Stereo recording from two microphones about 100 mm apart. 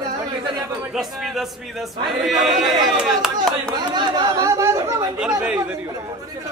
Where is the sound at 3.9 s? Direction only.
45° right (ahead or behind).